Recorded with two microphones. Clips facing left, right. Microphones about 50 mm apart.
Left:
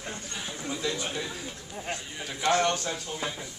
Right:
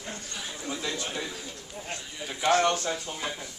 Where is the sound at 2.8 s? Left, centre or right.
Centre.